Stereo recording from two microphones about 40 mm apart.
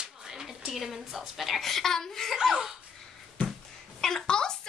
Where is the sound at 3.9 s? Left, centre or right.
Centre.